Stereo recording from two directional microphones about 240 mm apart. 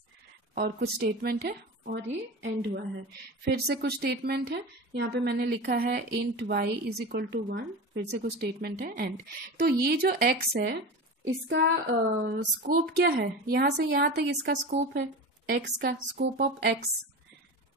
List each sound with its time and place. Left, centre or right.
0.6 s a woman's voice: right